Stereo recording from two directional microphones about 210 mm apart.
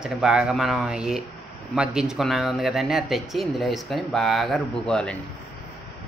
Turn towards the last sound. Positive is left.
turn(degrees=5)  # may be behind; listen again after turning